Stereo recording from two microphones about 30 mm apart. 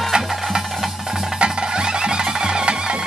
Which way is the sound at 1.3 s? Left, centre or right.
Right.